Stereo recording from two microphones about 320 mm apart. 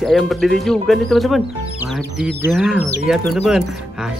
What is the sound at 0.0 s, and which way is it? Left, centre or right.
Speech, centre.